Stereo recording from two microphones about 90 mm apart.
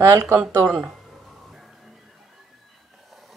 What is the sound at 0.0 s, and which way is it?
Speech, 30° right (ahead or behind).